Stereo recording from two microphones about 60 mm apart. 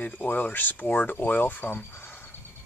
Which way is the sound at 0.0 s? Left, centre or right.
Left.